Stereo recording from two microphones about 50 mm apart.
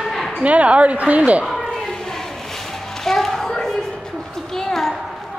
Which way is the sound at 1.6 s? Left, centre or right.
Centre.